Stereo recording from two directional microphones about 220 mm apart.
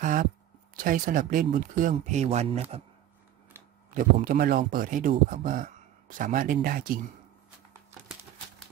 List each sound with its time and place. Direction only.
0.0 s a sound: 35° right (ahead or behind)
0.7 s speech: 40° right (ahead or behind)
3.9 s speech: 40° right (ahead or behind)